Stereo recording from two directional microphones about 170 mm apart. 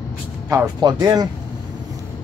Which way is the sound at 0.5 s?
20° right (ahead or behind).